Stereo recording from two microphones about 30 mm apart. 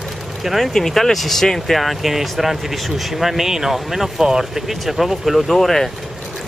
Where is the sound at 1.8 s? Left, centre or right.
Centre.